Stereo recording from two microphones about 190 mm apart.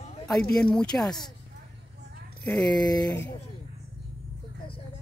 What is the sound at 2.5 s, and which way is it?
Speech, 5° left (ahead or behind).